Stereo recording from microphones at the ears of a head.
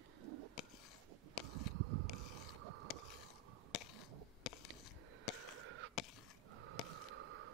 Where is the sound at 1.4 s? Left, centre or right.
Right.